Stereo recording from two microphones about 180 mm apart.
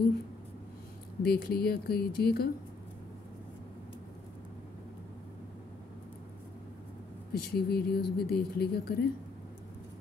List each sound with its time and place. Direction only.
1.2 s speech: 55° left (ahead or behind)
7.3 s speech: 60° left (ahead or behind)